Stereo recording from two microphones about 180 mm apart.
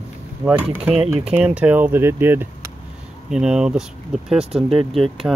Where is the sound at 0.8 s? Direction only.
35° right (ahead or behind).